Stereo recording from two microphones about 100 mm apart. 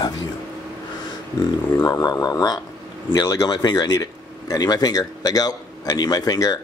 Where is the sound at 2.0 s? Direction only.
40° left (ahead or behind).